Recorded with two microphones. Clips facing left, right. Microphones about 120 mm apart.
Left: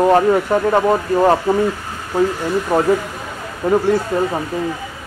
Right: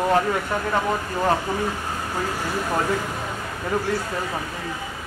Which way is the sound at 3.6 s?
35° left (ahead or behind).